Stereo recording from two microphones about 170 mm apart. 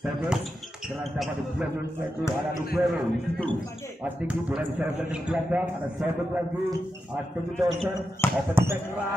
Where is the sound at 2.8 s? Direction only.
Centre (ahead or behind).